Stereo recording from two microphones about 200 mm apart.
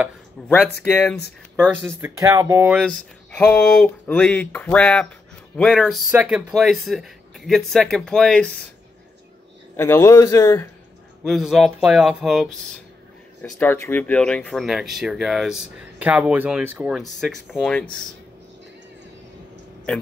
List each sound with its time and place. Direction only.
0.5 s a man's voice: 5° left (ahead or behind)
1.6 s speech: 10° right (ahead or behind)
3.3 s speech: 5° left (ahead or behind)
9.8 s a man's voice: 10° left (ahead or behind)
11.2 s speech: centre (ahead or behind)